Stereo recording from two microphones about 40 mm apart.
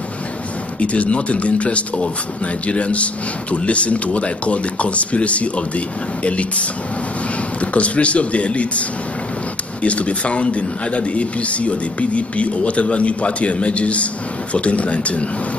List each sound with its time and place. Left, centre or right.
0.7 s speech: left
7.6 s speech: left
9.8 s speech: left